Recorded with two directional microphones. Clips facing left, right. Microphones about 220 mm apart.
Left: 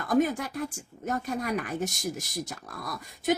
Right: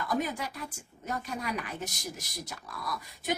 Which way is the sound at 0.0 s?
50° left (ahead or behind).